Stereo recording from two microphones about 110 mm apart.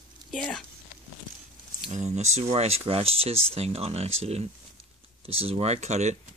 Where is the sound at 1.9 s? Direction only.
90° right.